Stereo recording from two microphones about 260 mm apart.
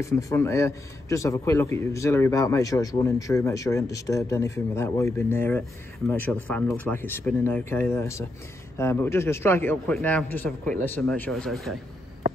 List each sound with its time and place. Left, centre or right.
0.0 s a man's voice: centre